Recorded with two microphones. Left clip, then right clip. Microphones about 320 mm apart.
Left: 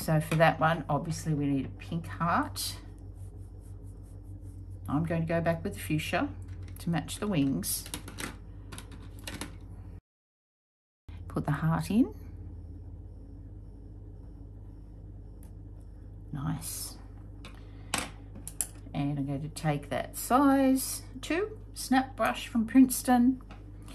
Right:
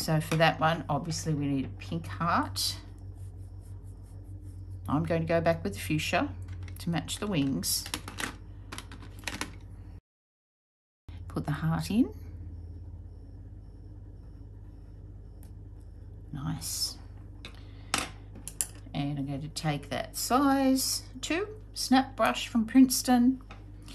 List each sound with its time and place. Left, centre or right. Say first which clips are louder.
0.0 s speech: left 1 dB; centre
4.8 s speech: right 3 dB; centre
8.7 s computer keyboard: right 4 dB; centre
11.2 s speech: left 2 dB; centre
16.3 s a sound: right 1 dB; centre
17.9 s speech: right 2 dB; centre